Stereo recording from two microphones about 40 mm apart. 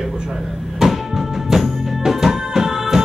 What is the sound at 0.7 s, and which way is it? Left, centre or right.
Music, centre.